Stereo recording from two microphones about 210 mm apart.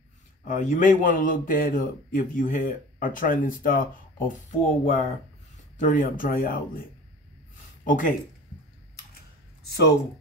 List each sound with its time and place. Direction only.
0.5 s a man's voice: 35° left (ahead or behind)
7.8 s speech: 40° left (ahead or behind)
9.7 s speech: 50° left (ahead or behind)